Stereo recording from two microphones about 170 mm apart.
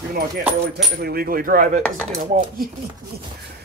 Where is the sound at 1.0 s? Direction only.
60° right (ahead or behind).